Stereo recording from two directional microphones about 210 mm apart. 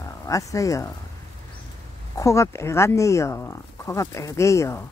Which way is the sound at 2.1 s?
15° left (ahead or behind).